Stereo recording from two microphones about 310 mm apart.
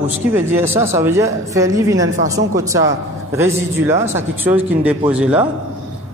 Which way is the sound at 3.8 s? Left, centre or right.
Centre.